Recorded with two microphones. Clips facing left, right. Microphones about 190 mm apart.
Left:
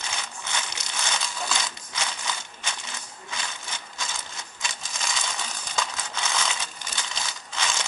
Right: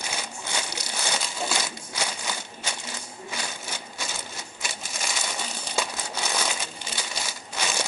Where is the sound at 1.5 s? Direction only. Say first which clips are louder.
Right 2 dB; 10° right (ahead or behind).